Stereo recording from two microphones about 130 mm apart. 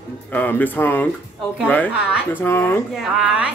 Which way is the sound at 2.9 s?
5° right (ahead or behind).